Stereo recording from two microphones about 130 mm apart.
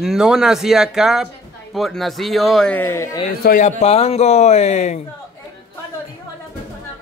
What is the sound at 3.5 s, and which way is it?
Speech, 60° left (ahead or behind).